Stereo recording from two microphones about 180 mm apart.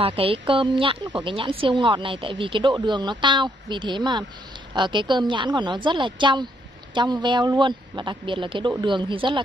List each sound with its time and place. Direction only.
0.0 s a woman's voice: 30° right (ahead or behind)